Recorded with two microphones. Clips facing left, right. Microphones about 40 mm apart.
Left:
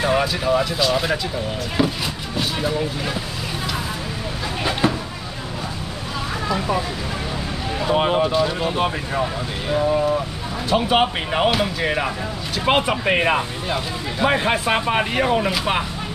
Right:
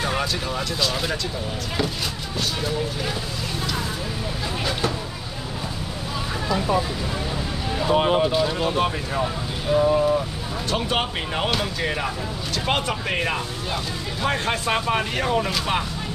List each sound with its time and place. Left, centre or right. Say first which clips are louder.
0.0 s speech: left 5 dB; centre
7.8 s speech: left 1 dB; centre